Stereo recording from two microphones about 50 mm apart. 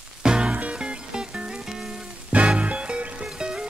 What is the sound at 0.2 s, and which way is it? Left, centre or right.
Music, centre.